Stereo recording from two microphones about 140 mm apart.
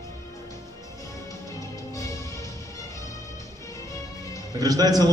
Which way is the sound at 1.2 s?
25° left (ahead or behind).